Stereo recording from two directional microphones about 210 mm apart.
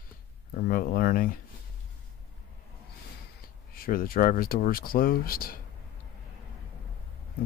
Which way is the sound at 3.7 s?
45° left (ahead or behind).